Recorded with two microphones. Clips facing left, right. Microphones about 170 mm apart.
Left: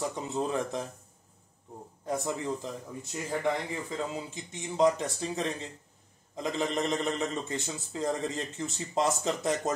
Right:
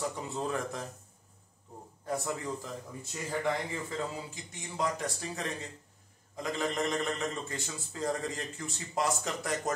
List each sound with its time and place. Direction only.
0.1 s a man's voice: 20° left (ahead or behind)
2.0 s a man's voice: 20° left (ahead or behind)